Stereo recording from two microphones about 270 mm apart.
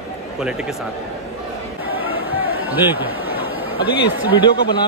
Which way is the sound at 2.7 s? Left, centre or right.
Centre.